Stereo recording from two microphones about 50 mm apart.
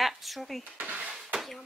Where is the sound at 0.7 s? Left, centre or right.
Right.